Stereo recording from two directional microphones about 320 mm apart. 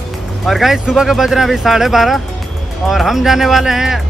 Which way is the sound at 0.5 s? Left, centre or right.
Centre.